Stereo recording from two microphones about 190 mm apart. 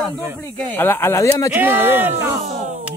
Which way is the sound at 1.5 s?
10° right (ahead or behind).